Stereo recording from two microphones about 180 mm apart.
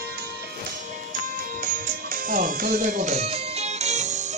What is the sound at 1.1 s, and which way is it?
Music, 50° right (ahead or behind).